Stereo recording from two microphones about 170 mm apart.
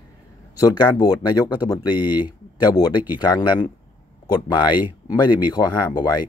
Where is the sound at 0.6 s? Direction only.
20° left (ahead or behind).